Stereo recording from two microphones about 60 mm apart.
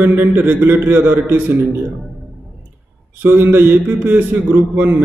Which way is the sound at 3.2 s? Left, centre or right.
Right.